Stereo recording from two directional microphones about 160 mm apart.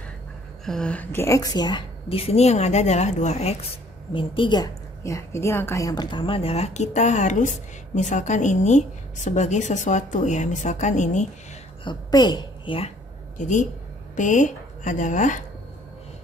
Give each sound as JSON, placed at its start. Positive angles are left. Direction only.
{"t": 0.7, "sound": "a woman's voice", "side_deg": 5}
{"t": 4.1, "sound": "a woman's voice", "side_deg": 30}
{"t": 11.8, "sound": "a woman's voice", "side_deg": 25}
{"t": 13.4, "sound": "a woman's voice", "side_deg": 50}